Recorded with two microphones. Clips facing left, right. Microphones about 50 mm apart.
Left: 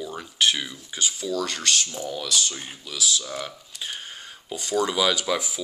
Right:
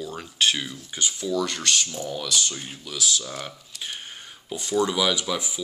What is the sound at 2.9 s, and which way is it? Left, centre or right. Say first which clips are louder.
Speech: even; right.